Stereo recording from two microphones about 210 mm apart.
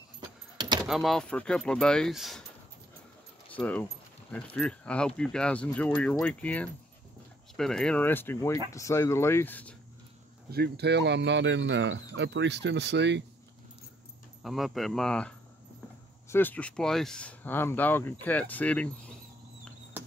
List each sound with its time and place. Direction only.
0.8 s speech: centre (ahead or behind)
3.5 s speech: 5° left (ahead or behind)
10.5 s speech: 50° right (ahead or behind)
14.4 s speech: centre (ahead or behind)